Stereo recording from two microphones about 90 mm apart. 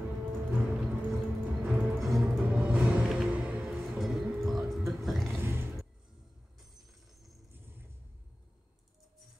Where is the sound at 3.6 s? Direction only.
5° right (ahead or behind).